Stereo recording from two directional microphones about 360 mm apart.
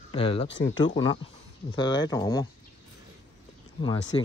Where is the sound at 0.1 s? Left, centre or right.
Centre.